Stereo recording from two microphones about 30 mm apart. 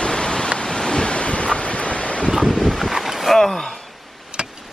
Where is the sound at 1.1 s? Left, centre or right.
Left.